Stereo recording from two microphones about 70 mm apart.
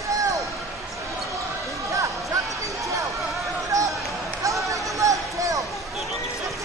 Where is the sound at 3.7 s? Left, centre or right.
Right.